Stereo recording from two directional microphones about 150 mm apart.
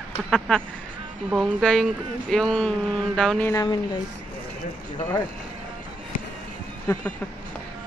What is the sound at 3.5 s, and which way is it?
Speech, 25° left (ahead or behind).